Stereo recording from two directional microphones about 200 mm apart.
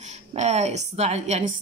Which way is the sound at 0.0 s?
35° right (ahead or behind).